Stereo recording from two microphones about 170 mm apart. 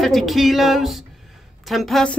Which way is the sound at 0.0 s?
Centre (ahead or behind).